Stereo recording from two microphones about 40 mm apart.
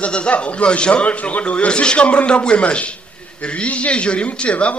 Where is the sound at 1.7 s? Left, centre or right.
Left.